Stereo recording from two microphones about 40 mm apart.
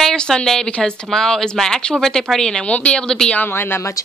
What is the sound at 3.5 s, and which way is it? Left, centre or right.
Speech, left.